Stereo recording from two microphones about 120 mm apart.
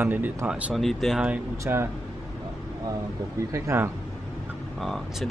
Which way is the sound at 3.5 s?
25° right (ahead or behind).